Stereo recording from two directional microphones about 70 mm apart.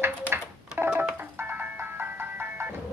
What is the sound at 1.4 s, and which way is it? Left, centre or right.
Ice cream truck, right.